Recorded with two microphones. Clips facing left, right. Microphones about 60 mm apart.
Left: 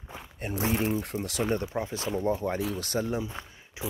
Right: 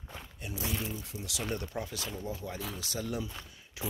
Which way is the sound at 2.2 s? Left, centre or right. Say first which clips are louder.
Left 11 dB; left.